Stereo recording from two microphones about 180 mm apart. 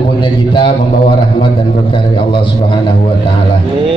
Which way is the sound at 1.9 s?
30° left (ahead or behind).